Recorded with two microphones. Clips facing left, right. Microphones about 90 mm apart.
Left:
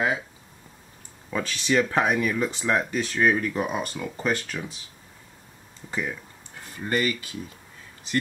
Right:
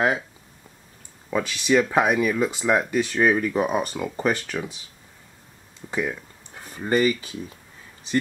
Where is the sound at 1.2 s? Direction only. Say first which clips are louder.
Right 4 dB; 10° right (ahead or behind).